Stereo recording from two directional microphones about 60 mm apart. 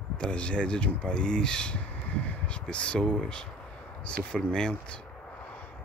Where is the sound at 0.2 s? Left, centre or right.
Centre.